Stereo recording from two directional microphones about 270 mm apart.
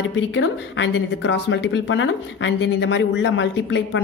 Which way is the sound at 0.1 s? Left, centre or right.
Left.